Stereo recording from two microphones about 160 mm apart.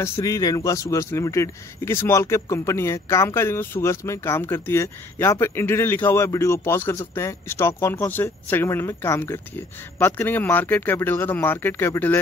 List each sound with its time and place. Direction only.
0.0 s a man's voice: 20° left (ahead or behind)